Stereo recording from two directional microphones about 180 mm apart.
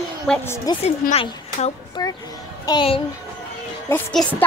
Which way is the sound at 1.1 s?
35° left (ahead or behind).